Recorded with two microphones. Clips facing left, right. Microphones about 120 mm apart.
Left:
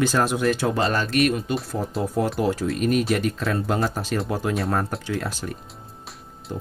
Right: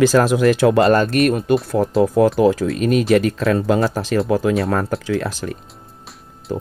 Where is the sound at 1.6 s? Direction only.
90° right.